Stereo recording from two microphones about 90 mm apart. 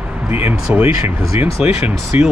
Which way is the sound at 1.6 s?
10° right (ahead or behind).